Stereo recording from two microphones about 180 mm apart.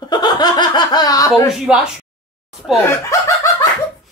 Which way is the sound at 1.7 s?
5° right (ahead or behind).